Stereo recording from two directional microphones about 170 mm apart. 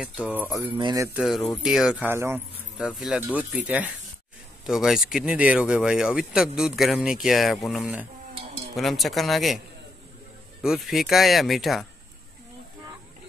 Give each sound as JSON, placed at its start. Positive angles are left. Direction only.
{"t": 0.0, "sound": "speech", "side_deg": -5}
{"t": 0.7, "sound": "speech", "side_deg": -25}
{"t": 1.0, "sound": "speech", "side_deg": -5}
{"t": 2.9, "sound": "speech", "side_deg": 0}
{"t": 10.6, "sound": "speech", "side_deg": 0}